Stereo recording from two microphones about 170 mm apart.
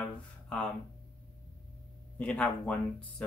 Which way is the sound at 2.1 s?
10° left (ahead or behind).